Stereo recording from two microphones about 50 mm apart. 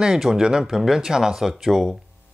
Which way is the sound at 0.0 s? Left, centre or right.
Centre.